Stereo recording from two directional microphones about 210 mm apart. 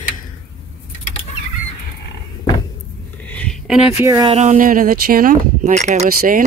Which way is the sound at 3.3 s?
5° left (ahead or behind).